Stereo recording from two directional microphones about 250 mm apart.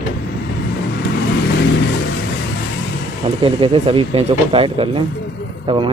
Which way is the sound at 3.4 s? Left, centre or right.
Right.